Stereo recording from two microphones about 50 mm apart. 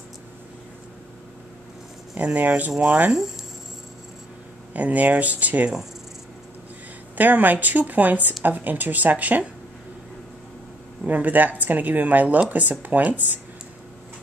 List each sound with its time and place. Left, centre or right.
2.1 s speech: right
4.7 s speech: right
7.2 s speech: right
11.1 s speech: right